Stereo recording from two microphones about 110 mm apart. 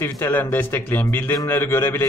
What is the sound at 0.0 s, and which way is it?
A man's voice, 20° left (ahead or behind).